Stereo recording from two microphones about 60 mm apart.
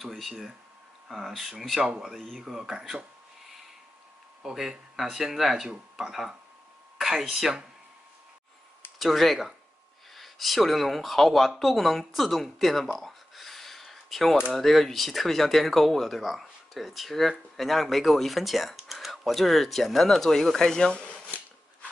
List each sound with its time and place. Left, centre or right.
0.0 s speech: centre
4.4 s speech: centre
8.9 s speech: centre
20.9 s a sound: left